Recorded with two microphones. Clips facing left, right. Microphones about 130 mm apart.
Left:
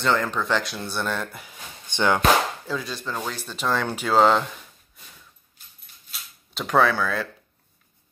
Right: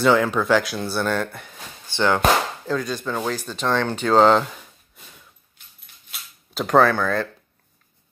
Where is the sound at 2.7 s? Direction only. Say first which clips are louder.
Right 5 dB; centre (ahead or behind).